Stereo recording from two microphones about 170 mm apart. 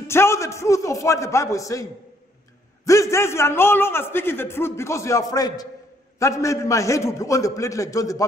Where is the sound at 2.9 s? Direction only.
20° left (ahead or behind).